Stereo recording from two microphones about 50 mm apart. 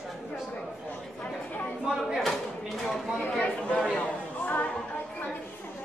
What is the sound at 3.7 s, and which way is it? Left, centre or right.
Speech, centre.